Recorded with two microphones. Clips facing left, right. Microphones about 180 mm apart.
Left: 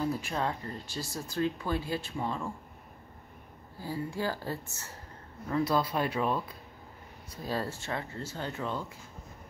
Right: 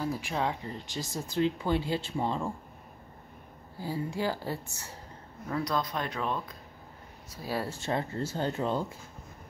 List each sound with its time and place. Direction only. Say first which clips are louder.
0.0 s speech: even; 10° right (ahead or behind); by 2.5 s 25° right (ahead or behind)
3.8 s a woman's voice: right 2 dB; 15° right (ahead or behind)
5.5 s speech: left 3 dB; 5° left (ahead or behind)
7.2 s a woman's voice: even; 10° right (ahead or behind)
7.8 s speech: right 5 dB; 30° right (ahead or behind)